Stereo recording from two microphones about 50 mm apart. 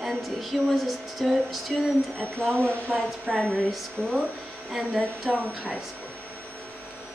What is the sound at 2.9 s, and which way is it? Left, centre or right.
Speech, centre.